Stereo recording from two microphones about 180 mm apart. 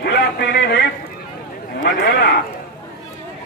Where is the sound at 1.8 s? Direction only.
60° left (ahead or behind).